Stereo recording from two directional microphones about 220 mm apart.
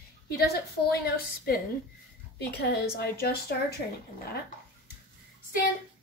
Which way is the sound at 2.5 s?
45° left (ahead or behind).